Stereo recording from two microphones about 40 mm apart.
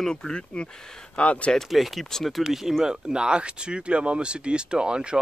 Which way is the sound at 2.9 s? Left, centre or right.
Right.